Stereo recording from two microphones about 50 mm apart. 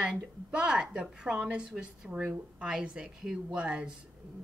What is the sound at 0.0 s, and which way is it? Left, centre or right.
A woman's voice, centre.